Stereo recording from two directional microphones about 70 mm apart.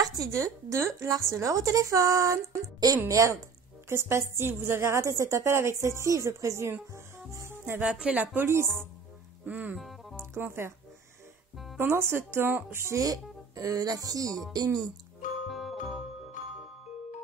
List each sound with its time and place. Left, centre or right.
0.0 s speech: right
3.9 s a woman's voice: right
8.0 s speech: right
8.4 s a woman's voice: right
9.5 s speech: right
9.8 s music: centre
10.4 s a woman's voice: right
11.5 s music: centre
11.8 s a woman's voice: right
12.9 s speech: right
15.4 s music: centre